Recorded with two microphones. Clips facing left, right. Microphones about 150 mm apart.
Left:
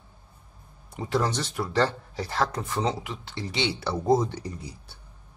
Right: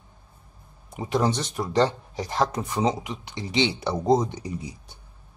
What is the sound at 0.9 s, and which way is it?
Speech, 20° right (ahead or behind).